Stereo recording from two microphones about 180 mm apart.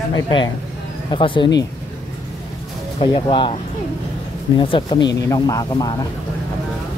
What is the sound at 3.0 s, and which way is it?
Speech, 30° left (ahead or behind).